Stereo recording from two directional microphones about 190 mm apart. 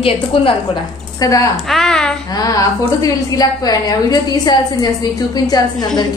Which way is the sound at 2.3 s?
20° left (ahead or behind).